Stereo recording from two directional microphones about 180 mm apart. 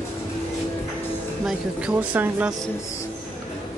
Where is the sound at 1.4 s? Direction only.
5° right (ahead or behind).